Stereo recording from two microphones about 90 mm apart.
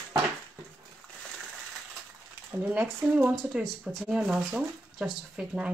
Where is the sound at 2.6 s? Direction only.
15° right (ahead or behind).